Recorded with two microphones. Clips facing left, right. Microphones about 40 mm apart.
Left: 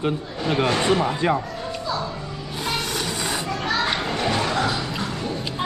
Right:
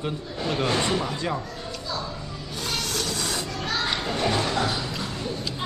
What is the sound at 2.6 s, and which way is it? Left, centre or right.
Children playing, centre.